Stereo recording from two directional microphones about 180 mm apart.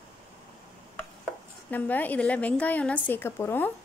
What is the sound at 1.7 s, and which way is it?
A woman's voice, 10° left (ahead or behind).